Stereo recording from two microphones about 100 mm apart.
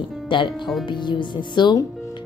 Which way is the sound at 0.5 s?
Centre (ahead or behind).